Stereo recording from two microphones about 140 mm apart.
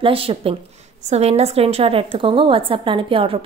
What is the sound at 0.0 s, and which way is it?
A woman's voice, 40° right (ahead or behind).